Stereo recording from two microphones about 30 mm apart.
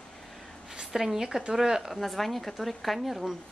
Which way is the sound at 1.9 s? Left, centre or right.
Centre.